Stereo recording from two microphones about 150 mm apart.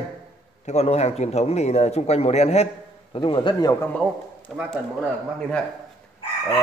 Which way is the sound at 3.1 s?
35° left (ahead or behind).